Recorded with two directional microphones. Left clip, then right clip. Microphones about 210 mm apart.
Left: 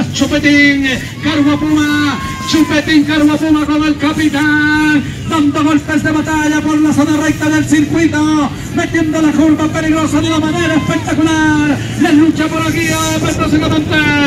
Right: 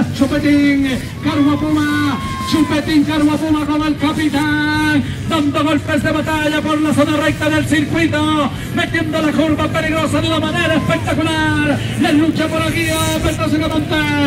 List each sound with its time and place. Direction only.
0.3 s a man's voice: 50° right (ahead or behind)